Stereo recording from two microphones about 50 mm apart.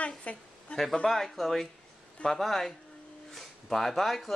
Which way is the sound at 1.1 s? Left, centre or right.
Centre.